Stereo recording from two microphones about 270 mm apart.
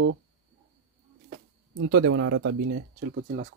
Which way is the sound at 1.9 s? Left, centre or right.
Right.